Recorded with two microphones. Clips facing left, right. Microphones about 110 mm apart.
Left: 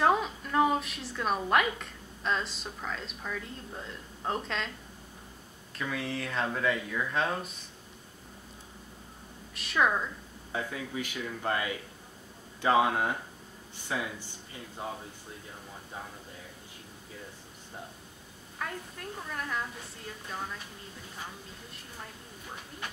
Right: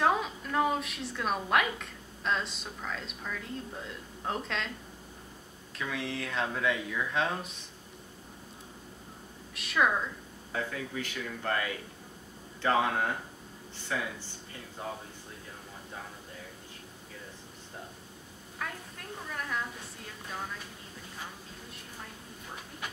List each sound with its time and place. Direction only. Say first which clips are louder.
0.0 s a woman's voice: left 2 dB; centre (ahead or behind)
5.8 s speech: left 1 dB; centre (ahead or behind)
9.5 s a woman's voice: even; centre (ahead or behind)
10.5 s speech: even; 15° left (ahead or behind)
18.6 s a sound: left 2 dB; centre (ahead or behind)